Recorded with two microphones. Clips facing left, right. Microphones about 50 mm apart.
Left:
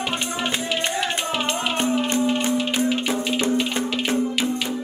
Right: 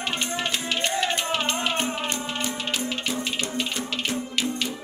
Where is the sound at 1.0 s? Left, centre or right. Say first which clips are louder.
Left 1 dB; centre.